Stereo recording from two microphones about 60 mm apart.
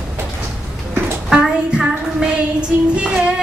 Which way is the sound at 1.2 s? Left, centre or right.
Centre.